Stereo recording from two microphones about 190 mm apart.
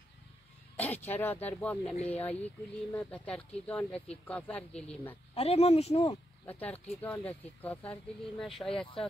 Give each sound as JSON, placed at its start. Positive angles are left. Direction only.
{"t": 0.7, "sound": "speech", "side_deg": 10}
{"t": 5.3, "sound": "speech", "side_deg": 30}
{"t": 6.4, "sound": "speech", "side_deg": 10}